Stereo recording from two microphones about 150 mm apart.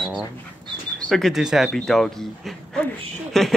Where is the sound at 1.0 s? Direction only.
Centre (ahead or behind).